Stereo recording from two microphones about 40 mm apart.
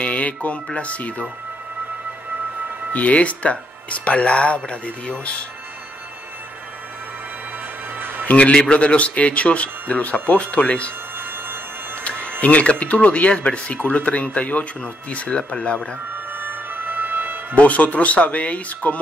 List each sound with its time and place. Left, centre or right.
0.0 s a sound: left
0.7 s speech: left
2.9 s speech: left
8.3 s speech: left
12.4 s speech: left
16.3 s music: right
17.6 s speech: left